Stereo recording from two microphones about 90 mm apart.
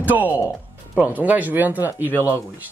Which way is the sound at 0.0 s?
20° right (ahead or behind).